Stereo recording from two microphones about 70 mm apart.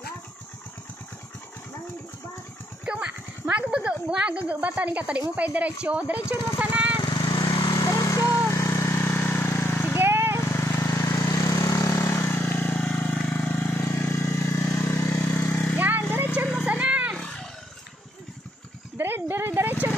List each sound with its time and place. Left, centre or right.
2.8 s a sound: centre
3.4 s a woman's voice: centre
6.6 s lawn mower: centre
7.0 s vehicle: left
7.9 s vehicle: left
9.9 s vehicle: right
10.4 s lawn mower: left
10.7 s vehicle: left
12.1 s vehicle: left
12.7 s vehicle: centre; by 15.1 s left
15.2 s a sound: left
16.6 s a sound: centre
18.9 s a sound: right